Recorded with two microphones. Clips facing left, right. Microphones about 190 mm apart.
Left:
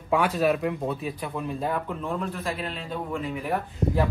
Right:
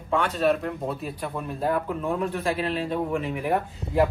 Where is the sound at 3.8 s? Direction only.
35° left (ahead or behind).